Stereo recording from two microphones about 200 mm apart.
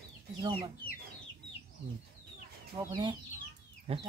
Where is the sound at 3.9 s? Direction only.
30° right (ahead or behind).